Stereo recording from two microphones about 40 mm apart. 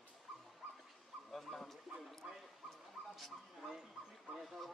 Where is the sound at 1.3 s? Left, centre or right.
Centre.